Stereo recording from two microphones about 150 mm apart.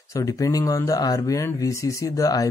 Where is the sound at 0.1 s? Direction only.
20° left (ahead or behind).